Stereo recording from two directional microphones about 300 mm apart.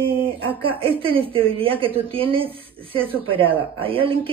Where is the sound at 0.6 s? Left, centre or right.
Centre.